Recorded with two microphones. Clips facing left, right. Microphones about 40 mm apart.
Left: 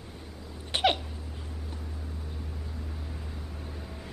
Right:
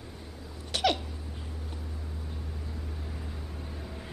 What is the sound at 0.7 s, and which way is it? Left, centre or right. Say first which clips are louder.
Hiccup: left 2 dB; left.